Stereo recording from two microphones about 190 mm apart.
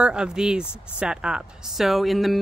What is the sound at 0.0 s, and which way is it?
Speech, 5° right (ahead or behind).